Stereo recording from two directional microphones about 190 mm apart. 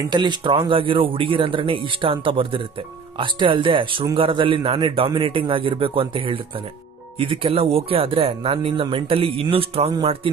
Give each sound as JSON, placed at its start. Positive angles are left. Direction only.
{"t": 0.1, "sound": "speech", "side_deg": -25}